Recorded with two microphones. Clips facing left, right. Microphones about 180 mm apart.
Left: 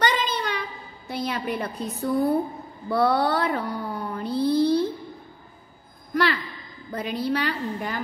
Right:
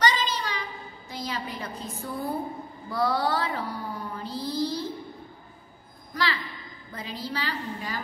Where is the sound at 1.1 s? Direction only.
60° left (ahead or behind).